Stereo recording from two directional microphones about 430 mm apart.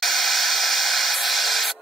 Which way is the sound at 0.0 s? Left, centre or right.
Centre.